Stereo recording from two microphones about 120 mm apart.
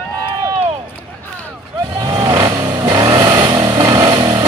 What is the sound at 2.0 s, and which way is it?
Vehicle, 35° right (ahead or behind).